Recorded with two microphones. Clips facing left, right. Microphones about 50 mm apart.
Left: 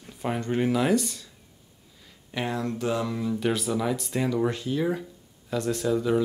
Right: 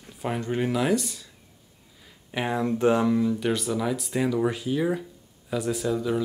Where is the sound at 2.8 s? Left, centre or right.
Right.